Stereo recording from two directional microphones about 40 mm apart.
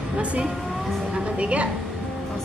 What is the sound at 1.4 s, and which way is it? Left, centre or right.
Speech, right.